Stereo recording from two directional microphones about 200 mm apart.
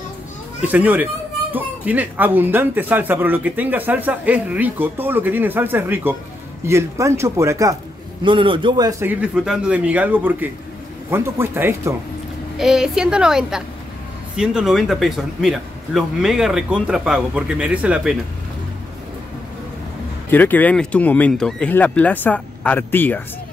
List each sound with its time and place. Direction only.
0.7 s a man's voice: 10° right (ahead or behind)
9.0 s speech: 10° right (ahead or behind)
20.2 s speech: 10° left (ahead or behind)